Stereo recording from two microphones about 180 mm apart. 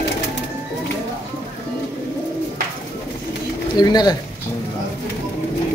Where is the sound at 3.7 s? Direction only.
20° left (ahead or behind).